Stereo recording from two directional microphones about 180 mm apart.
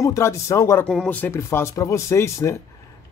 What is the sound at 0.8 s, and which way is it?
Speech, 5° left (ahead or behind).